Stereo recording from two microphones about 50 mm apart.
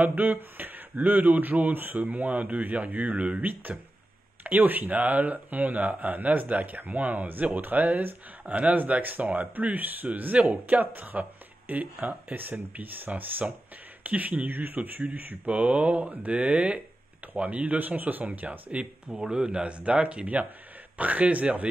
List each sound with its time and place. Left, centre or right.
0.0 s speech: right
3.4 s speech: right
15.4 s speech: right
19.0 s speech: centre
19.4 s speech: right